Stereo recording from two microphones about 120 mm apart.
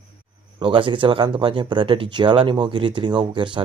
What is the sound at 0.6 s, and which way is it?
Speech, 45° right (ahead or behind).